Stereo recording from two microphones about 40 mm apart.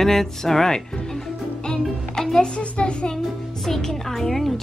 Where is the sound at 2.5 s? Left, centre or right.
Left.